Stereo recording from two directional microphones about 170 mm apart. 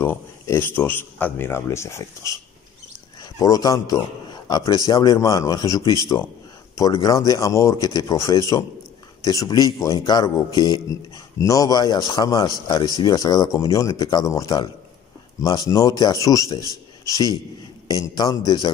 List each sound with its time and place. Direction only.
0.0 s a man's voice: 15° left (ahead or behind)